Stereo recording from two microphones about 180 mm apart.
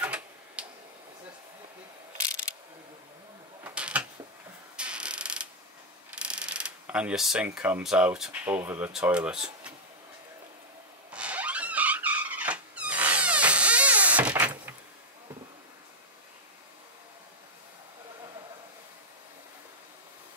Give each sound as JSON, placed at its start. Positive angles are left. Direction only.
{"t": 0.0, "sound": "tick-tock", "side_deg": -5}
{"t": 3.6, "sound": "a sound", "side_deg": -5}
{"t": 6.1, "sound": "speech", "side_deg": -5}
{"t": 11.1, "sound": "vehicle", "side_deg": -5}
{"t": 14.3, "sound": "door", "side_deg": -10}